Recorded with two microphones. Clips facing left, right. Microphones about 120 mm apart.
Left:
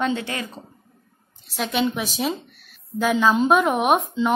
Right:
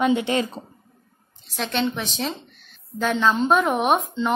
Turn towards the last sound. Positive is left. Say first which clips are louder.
# left 1 dB
turn(degrees=0)  # may be behind; listen again after turning